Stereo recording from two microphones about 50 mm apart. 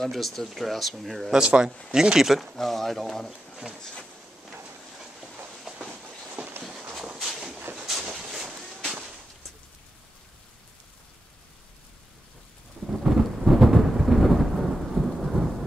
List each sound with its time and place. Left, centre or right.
0.0 s speech: centre
1.3 s speech: centre
2.5 s speech: centre
3.5 s speech: centre
5.8 s train: right
7.2 s a sound: centre
12.8 s thunder: centre